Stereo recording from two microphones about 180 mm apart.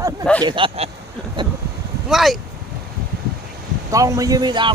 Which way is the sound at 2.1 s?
Centre (ahead or behind).